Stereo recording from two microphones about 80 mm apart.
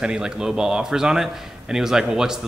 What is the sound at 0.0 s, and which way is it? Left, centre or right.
A man's voice, centre.